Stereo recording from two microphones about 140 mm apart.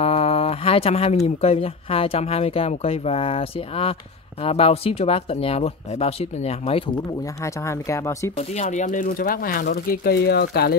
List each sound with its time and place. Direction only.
0.0 s speech: 45° left (ahead or behind)
7.4 s speech: 20° left (ahead or behind)
8.4 s speech: 55° left (ahead or behind); by 10.3 s 90° left